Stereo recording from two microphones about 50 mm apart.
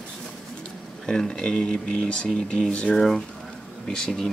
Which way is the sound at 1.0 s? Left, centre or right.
Centre.